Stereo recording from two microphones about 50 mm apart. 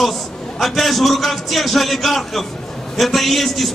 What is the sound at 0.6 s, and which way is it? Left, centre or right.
A man's voice, centre.